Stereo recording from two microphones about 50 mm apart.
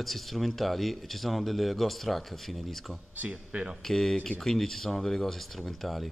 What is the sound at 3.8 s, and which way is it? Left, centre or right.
A man's voice, centre.